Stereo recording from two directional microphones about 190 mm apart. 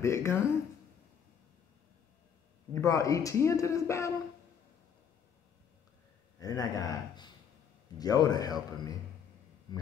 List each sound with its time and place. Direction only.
0.0 s speech: 15° left (ahead or behind)
2.7 s speech: 15° left (ahead or behind)
6.4 s speech: 20° left (ahead or behind)